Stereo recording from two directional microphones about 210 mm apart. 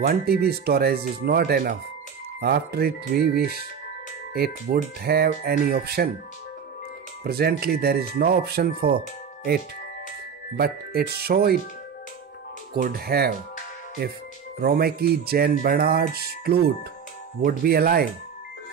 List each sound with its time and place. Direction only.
0.0 s speech: 45° right (ahead or behind)
5.0 s speech: 50° right (ahead or behind)
7.2 s speech: 45° right (ahead or behind)
10.6 s speech: 45° right (ahead or behind)
12.7 s speech: 45° right (ahead or behind)
14.6 s speech: 45° right (ahead or behind)